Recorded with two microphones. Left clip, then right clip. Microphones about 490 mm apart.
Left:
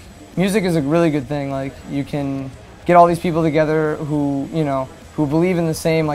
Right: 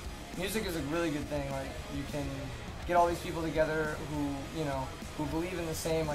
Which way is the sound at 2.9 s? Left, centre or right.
Left.